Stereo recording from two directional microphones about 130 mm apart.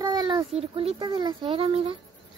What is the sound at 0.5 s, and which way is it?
A child's voice, 50° right (ahead or behind).